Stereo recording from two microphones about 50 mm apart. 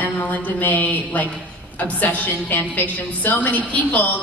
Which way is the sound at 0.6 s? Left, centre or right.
Left.